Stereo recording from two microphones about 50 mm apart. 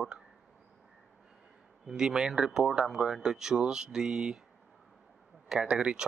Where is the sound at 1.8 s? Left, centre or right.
Centre.